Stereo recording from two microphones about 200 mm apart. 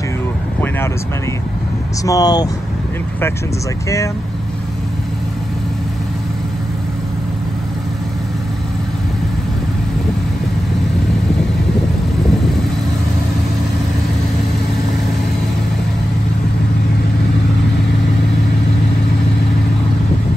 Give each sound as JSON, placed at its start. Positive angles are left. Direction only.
{"t": 2.0, "sound": "speech", "side_deg": 20}